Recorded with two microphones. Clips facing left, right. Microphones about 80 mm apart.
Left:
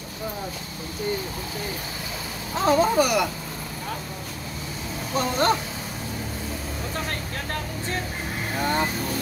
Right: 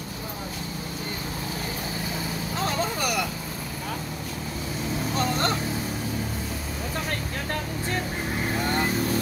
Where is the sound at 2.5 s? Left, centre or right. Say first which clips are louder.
Left 9 dB; centre.